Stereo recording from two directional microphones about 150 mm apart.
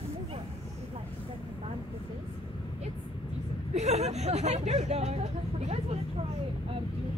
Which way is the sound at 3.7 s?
50° right (ahead or behind).